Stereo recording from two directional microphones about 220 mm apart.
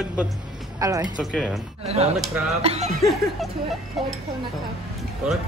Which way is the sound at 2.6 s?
30° right (ahead or behind).